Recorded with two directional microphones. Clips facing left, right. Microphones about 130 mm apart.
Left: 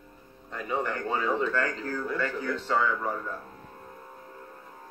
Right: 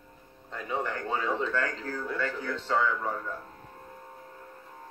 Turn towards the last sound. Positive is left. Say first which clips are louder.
# left 1 dB
turn(degrees=5)  # may be behind; listen again after turning